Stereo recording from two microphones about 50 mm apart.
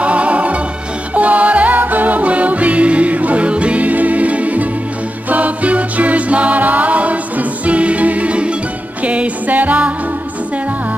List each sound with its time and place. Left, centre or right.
0.0 s music: right